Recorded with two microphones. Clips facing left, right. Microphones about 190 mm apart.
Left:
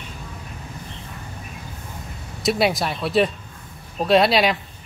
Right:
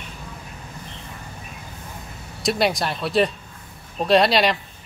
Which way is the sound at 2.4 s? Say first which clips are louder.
Left 1 dB; centre (ahead or behind).